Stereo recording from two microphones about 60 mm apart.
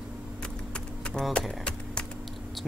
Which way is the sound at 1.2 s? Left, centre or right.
Centre.